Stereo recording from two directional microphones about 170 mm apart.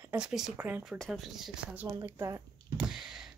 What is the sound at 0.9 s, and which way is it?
Speech, 5° left (ahead or behind).